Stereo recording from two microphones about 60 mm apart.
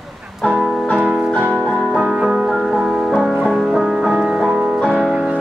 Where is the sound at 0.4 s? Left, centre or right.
Centre.